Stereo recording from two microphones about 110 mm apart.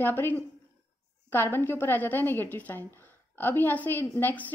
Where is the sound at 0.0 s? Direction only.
20° left (ahead or behind).